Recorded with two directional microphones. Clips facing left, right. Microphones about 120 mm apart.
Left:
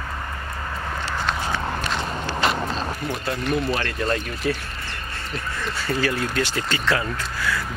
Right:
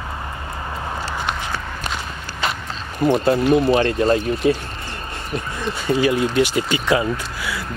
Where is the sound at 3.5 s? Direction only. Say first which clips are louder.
Right 8 dB; 30° right (ahead or behind).